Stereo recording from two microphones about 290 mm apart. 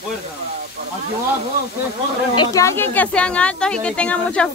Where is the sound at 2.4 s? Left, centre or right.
Centre.